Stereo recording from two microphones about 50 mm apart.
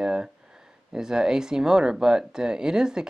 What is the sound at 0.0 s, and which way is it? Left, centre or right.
Speech, centre.